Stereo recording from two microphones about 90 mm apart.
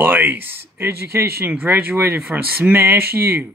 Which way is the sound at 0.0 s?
20° right (ahead or behind).